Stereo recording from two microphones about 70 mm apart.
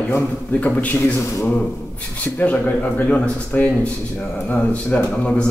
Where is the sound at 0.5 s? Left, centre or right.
Left.